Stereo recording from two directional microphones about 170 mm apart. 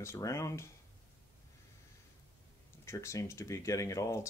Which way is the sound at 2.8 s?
15° left (ahead or behind).